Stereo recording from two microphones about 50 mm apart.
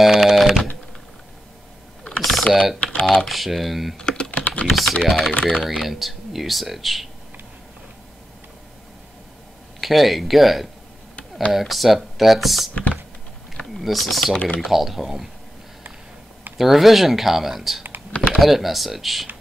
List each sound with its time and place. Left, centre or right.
0.0 s a sound: centre
2.0 s typing: centre
2.4 s speech: centre
2.8 s typing: left
3.2 s speech: centre
4.3 s typing: left
4.6 s speech: centre
9.8 s speech: centre
13.7 s speech: centre
16.5 s speech: centre
18.1 s typing: left
18.4 s speech: centre